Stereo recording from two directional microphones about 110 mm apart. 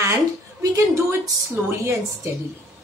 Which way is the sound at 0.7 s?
25° right (ahead or behind).